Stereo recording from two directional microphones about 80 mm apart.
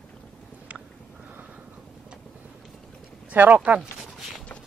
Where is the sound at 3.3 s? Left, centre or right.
Right.